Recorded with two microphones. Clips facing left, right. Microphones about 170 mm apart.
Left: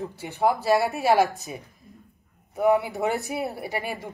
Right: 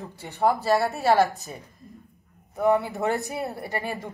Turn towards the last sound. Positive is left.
turn(degrees=15)  # may be behind; listen again after turning